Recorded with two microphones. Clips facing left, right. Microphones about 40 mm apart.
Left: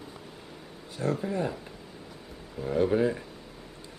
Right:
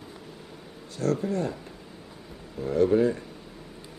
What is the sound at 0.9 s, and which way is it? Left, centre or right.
Speech, centre.